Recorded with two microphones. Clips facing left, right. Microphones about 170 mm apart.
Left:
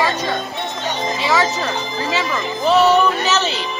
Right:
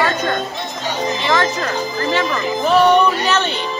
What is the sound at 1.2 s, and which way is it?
Music, 5° left (ahead or behind).